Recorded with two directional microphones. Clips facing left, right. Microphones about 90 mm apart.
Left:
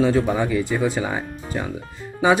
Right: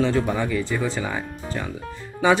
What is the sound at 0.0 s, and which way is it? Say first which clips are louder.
Speech: left 3 dB; 15° left (ahead or behind).